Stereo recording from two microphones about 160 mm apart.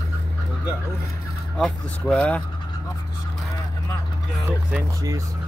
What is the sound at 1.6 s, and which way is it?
Speech, 5° left (ahead or behind).